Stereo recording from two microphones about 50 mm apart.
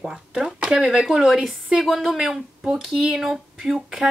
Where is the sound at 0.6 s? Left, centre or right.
Centre.